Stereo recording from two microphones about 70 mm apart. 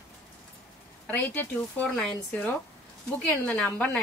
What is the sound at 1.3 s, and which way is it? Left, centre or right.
A woman's voice, left.